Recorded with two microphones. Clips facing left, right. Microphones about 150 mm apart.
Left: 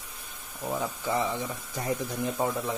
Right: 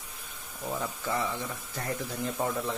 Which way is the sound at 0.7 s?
15° left (ahead or behind).